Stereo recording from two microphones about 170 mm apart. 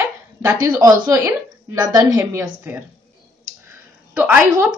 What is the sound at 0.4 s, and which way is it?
A woman's voice, 15° right (ahead or behind).